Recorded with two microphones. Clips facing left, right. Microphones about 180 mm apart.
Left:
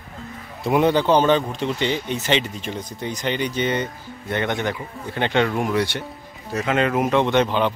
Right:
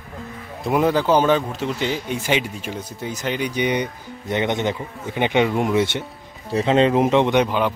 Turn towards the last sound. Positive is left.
turn(degrees=-10)  # may be behind; listen again after turning